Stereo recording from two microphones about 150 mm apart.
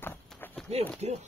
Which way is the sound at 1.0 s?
50° right (ahead or behind).